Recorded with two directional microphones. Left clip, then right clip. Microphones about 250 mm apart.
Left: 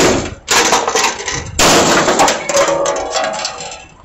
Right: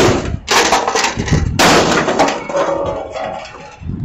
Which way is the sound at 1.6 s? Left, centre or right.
Left.